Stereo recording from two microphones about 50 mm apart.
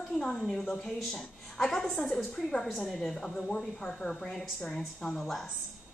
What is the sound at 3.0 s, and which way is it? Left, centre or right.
Speech, centre.